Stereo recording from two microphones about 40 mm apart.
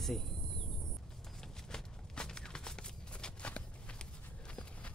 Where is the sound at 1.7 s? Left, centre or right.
Centre.